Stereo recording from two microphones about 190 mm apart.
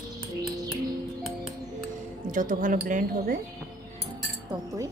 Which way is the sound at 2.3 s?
45° right (ahead or behind).